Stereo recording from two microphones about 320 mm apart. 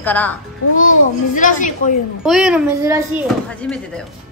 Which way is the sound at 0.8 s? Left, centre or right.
Left.